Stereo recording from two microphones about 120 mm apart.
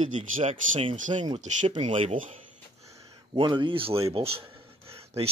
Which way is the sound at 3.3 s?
40° right (ahead or behind).